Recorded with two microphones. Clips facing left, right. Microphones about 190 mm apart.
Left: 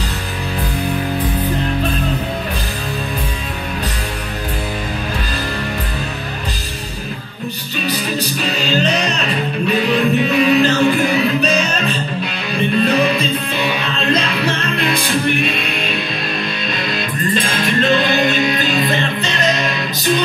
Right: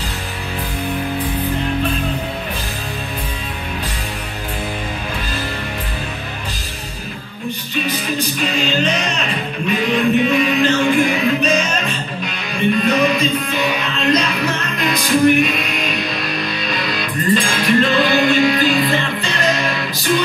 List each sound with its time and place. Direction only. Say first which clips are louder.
7.8 s music: left 2 dB; 35° left (ahead or behind)
16.9 s music: right 3 dB; 25° left (ahead or behind)